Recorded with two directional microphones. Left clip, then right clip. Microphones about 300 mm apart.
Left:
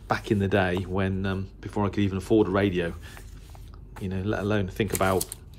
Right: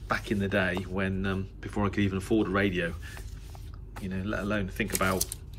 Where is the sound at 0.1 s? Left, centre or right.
Centre.